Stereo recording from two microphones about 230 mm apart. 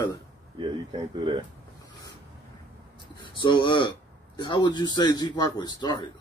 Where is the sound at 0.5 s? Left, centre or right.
Right.